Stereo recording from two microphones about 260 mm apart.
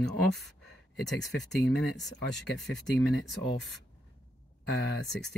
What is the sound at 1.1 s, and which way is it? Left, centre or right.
Speech, left.